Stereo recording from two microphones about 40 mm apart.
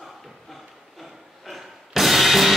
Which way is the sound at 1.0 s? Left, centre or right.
Centre.